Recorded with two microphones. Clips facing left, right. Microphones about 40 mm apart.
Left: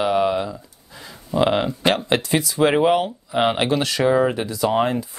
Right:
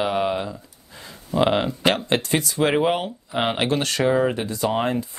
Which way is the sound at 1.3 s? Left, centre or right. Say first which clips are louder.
Left 1 dB; centre.